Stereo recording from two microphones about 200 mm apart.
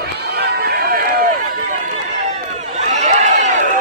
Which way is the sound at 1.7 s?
40° right (ahead or behind).